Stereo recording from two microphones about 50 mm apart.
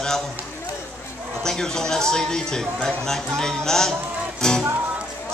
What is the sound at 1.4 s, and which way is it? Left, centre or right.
A man's voice, centre.